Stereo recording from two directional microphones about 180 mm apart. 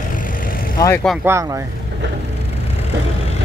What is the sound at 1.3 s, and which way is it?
Speech, 15° right (ahead or behind).